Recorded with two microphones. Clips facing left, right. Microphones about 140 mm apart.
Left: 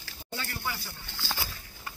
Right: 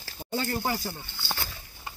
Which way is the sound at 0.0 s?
35° right (ahead or behind).